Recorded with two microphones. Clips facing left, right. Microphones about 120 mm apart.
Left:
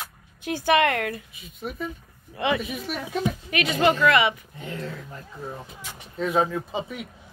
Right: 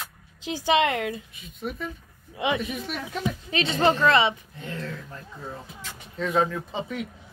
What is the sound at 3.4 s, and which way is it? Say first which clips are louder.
Speech: even; 25° right (ahead or behind).